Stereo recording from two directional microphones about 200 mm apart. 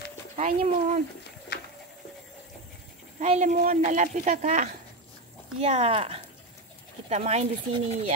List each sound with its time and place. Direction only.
0.4 s speech: 40° right (ahead or behind)
1.5 s a sound: 50° left (ahead or behind)
3.2 s speech: 40° right (ahead or behind)